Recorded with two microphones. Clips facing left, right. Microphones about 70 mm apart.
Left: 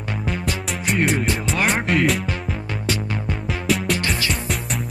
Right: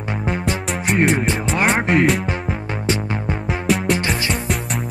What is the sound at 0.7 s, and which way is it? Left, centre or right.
Music, centre.